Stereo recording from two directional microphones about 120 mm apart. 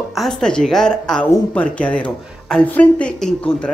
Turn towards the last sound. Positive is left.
turn(degrees=10)  # may be behind; listen again after turning